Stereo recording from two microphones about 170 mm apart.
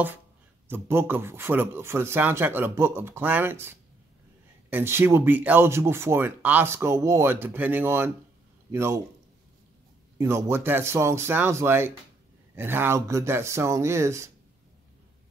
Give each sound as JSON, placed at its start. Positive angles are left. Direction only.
{"t": 0.7, "sound": "speech", "side_deg": -15}
{"t": 10.1, "sound": "speech", "side_deg": -15}